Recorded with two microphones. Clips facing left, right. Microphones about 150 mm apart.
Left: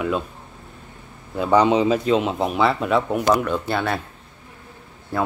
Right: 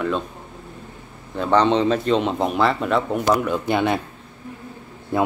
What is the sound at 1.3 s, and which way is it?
Speech, 10° left (ahead or behind).